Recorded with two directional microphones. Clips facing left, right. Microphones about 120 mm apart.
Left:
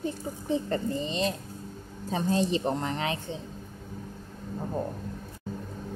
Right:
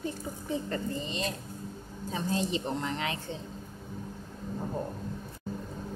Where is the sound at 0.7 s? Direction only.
30° left (ahead or behind).